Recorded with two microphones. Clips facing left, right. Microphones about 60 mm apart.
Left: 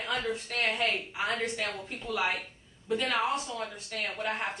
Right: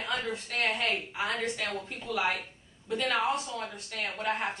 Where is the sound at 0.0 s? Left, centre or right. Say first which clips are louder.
Left 1 dB; centre.